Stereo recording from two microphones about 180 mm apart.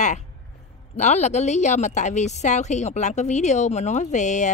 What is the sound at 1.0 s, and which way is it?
A woman's voice, 40° left (ahead or behind).